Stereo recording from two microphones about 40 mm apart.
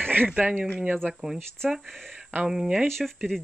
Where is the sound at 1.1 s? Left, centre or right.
Centre.